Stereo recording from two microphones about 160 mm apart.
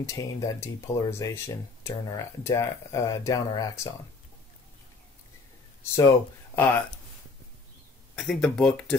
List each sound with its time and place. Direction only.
0.0 s speech: 20° left (ahead or behind)
5.9 s speech: 15° left (ahead or behind)
8.2 s speech: 5° left (ahead or behind)